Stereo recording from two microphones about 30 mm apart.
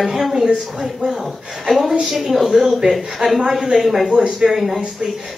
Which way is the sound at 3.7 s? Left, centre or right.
Centre.